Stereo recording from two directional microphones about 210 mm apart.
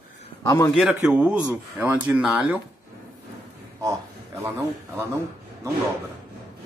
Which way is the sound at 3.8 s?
15° right (ahead or behind).